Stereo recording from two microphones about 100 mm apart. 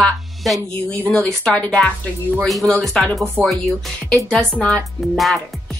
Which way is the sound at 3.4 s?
15° left (ahead or behind).